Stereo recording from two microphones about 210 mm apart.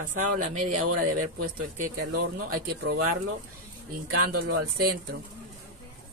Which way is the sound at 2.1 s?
50° right (ahead or behind).